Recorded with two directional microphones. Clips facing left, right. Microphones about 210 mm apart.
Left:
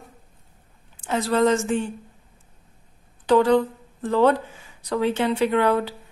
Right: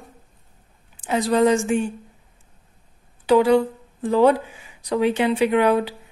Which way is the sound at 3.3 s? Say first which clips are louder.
Right 2 dB; 10° right (ahead or behind).